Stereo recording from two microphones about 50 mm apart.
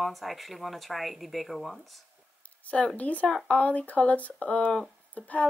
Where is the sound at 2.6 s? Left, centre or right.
Left.